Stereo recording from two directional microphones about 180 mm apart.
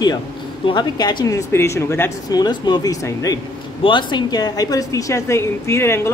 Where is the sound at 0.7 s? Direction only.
25° left (ahead or behind).